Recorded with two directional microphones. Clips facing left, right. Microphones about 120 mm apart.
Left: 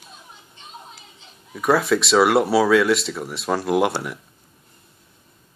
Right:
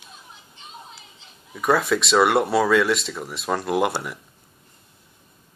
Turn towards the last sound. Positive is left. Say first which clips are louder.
# left 2 dB
turn(degrees=0)  # may be behind; listen again after turning